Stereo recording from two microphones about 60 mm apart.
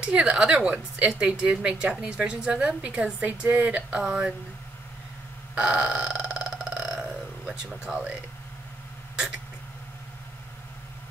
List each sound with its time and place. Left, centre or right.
0.0 s a woman's voice: centre
5.5 s burping: centre
7.0 s a sound: centre